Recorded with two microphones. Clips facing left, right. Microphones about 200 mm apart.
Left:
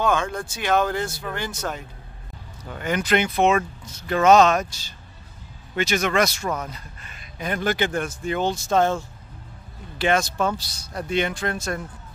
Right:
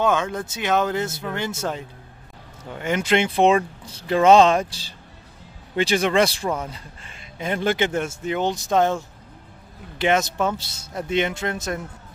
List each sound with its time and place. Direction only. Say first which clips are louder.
0.0 s a man's voice: right 1 dB; 20° right (ahead or behind)